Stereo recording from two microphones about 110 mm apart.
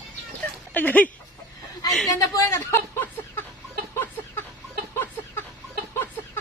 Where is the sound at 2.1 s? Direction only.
25° left (ahead or behind).